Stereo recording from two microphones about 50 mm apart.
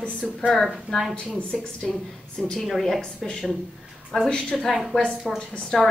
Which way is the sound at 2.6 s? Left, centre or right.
Centre.